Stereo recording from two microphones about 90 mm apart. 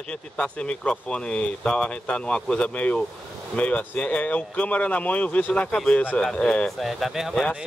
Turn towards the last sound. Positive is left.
turn(degrees=0)  # may be behind; listen again after turning